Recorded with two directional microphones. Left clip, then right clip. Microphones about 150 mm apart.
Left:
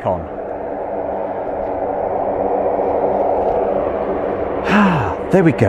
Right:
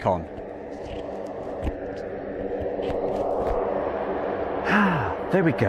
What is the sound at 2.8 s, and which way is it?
Hum, 40° right (ahead or behind).